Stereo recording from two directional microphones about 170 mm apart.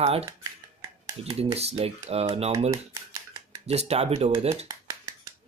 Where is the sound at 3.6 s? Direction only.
40° right (ahead or behind).